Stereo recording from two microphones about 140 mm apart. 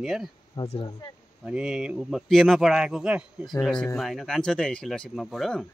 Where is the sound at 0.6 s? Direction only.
30° left (ahead or behind).